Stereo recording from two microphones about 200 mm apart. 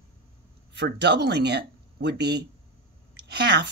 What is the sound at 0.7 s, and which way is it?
A woman's voice, 60° right (ahead or behind).